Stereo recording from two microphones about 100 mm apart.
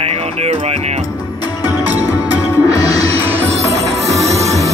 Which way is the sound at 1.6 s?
40° left (ahead or behind).